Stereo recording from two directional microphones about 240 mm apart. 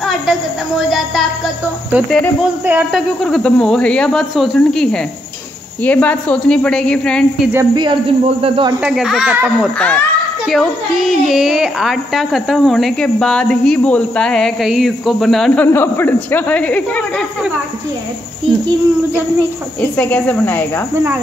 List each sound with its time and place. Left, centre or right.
0.0 s a sound: centre
1.9 s a child's voice: centre
7.5 s speech: centre
8.8 s a child's voice: centre
19.8 s a woman's voice: centre